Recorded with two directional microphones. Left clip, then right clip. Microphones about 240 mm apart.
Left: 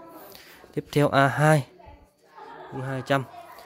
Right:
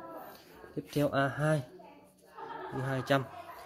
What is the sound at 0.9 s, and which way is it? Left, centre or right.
Speech, left.